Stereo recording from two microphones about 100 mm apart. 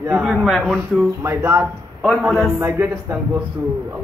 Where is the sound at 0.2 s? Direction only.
5° right (ahead or behind).